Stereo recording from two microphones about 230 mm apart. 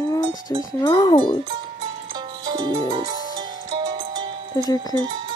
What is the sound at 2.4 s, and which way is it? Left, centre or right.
Music, centre.